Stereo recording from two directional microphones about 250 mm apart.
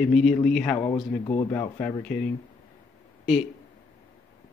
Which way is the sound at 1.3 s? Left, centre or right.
Centre.